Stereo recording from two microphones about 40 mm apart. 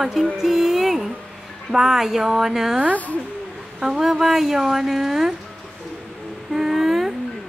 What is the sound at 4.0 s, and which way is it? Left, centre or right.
Speech, centre.